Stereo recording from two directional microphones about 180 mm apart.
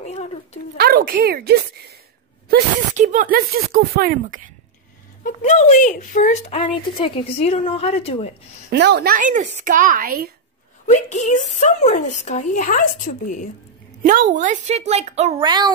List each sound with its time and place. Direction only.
0.0 s a sound: 35° left (ahead or behind)
0.7 s a woman's voice: 55° right (ahead or behind)
3.0 s speech: 45° right (ahead or behind)
5.2 s a woman's voice: 35° left (ahead or behind)
8.6 s a woman's voice: 70° right (ahead or behind)
9.1 s speech: 45° right (ahead or behind)
10.9 s a woman's voice: 40° left (ahead or behind)
14.0 s a woman's voice: 45° right (ahead or behind)
15.4 s a child's voice: 25° right (ahead or behind)